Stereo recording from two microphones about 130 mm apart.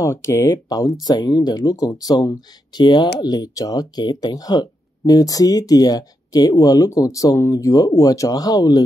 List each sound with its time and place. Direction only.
0.0 s speech: 20° left (ahead or behind)